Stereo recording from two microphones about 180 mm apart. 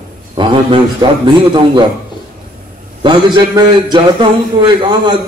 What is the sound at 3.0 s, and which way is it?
A man's voice, 25° right (ahead or behind).